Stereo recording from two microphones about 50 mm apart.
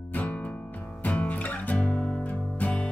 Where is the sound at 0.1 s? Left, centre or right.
Left.